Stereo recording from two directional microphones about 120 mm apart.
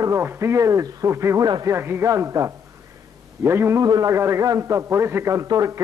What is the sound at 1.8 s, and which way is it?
A man's voice, 20° right (ahead or behind).